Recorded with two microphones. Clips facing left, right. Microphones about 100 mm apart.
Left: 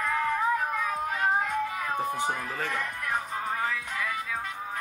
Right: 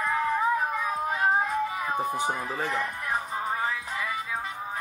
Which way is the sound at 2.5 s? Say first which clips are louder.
Right 2 dB; 15° right (ahead or behind).